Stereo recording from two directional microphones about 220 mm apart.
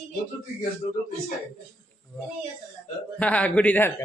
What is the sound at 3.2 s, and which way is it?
Speech, 5° left (ahead or behind).